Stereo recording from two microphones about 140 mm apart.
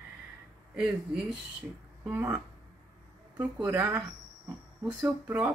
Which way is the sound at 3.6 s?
15° right (ahead or behind).